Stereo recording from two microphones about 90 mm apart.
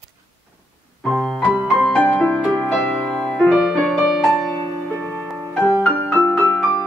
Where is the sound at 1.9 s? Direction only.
10° left (ahead or behind).